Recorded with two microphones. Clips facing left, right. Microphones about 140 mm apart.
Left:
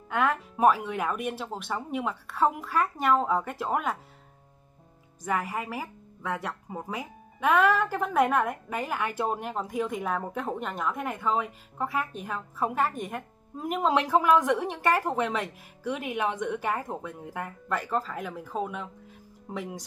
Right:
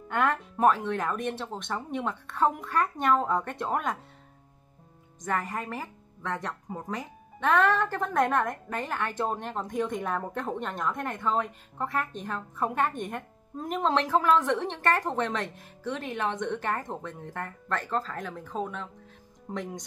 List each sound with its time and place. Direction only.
0.1 s speech: centre (ahead or behind)
5.2 s speech: 10° left (ahead or behind)